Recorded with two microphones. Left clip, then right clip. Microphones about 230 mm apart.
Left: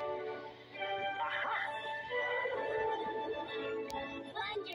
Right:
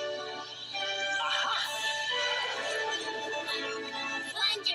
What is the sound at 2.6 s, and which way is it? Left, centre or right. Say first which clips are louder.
Music: right 3 dB; centre.